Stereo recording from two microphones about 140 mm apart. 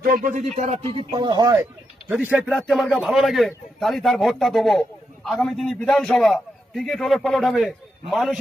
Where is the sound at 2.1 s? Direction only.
10° right (ahead or behind).